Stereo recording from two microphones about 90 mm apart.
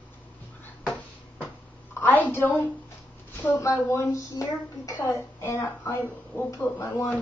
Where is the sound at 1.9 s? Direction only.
20° left (ahead or behind).